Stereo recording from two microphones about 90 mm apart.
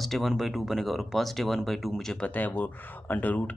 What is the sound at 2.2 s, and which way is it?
Speech, 20° left (ahead or behind).